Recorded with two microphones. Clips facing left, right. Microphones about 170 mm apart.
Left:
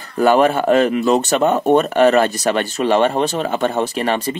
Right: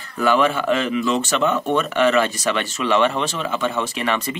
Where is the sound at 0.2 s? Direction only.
45° left (ahead or behind).